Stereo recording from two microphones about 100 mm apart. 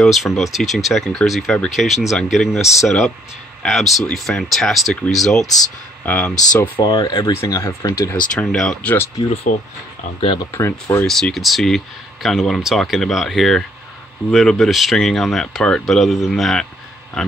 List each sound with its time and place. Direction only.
0.0 s speech: centre (ahead or behind)
6.0 s speech: 15° left (ahead or behind)
6.8 s speech: 40° left (ahead or behind); by 9.1 s 25° left (ahead or behind)
10.5 s speech: 20° left (ahead or behind)
11.1 s speech: 5° left (ahead or behind)